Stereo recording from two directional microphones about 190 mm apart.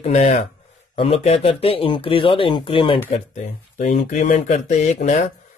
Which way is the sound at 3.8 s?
40° left (ahead or behind).